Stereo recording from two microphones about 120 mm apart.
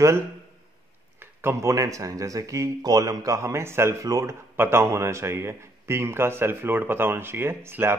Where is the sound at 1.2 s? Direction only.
20° right (ahead or behind).